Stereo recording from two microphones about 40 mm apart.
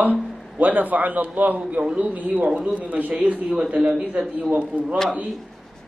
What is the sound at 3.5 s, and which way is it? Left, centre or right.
Speech, right.